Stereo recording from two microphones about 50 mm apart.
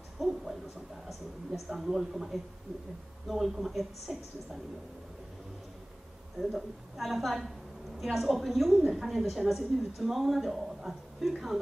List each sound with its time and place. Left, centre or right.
0.2 s a man's voice: centre
6.5 s a man's voice: centre